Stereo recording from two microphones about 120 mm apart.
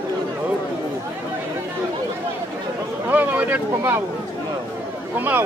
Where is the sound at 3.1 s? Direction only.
15° right (ahead or behind).